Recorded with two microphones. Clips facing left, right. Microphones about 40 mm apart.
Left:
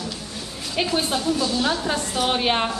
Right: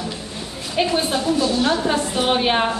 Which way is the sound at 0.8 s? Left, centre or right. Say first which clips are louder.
Right 3 dB; centre.